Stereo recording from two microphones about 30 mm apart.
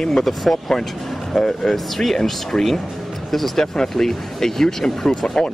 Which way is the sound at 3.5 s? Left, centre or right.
Left.